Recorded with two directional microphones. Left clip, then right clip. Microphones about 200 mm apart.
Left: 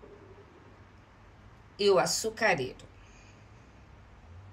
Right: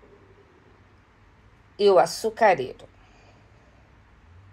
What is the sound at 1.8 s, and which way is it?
A woman's voice, centre (ahead or behind).